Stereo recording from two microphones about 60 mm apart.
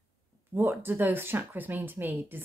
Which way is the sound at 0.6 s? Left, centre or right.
Right.